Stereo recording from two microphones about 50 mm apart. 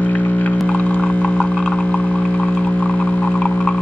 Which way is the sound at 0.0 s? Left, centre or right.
Left.